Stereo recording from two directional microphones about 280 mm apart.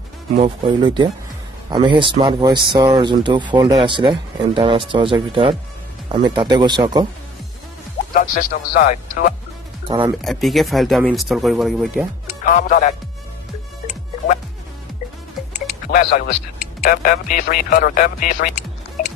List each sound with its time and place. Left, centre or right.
0.4 s speech: centre
8.1 s speech: left
9.8 s speech: centre
10.2 s speech: centre
12.4 s speech: left
13.8 s music: left
16.8 s speech: left